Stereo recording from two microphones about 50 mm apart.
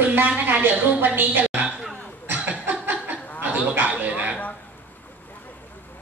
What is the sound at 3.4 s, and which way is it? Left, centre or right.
Gargling, right.